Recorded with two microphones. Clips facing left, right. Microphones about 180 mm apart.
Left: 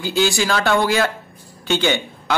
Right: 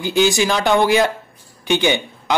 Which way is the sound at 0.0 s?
20° right (ahead or behind).